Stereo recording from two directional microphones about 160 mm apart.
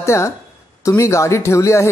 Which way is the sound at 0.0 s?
15° left (ahead or behind).